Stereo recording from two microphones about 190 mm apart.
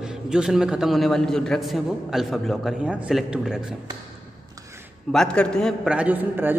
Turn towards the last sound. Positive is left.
turn(degrees=-10)  # may be behind; listen again after turning